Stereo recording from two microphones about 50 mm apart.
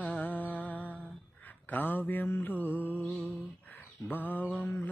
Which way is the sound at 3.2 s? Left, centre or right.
Left.